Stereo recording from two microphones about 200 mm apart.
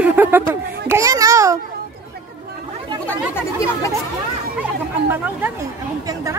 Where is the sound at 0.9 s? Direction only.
15° right (ahead or behind).